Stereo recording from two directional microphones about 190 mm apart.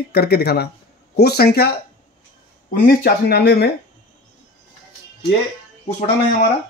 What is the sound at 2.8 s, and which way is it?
Speech, 55° left (ahead or behind).